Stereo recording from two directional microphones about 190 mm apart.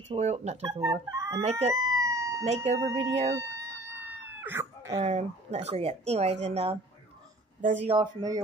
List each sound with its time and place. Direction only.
0.1 s speech: 35° right (ahead or behind)
1.1 s chicken: 15° right (ahead or behind)
1.4 s speech: 35° right (ahead or behind)
1.7 s police car: 15° right (ahead or behind)
2.4 s speech: 35° right (ahead or behind)
3.3 s dog: 15° right (ahead or behind)
4.9 s speech: 35° right (ahead or behind)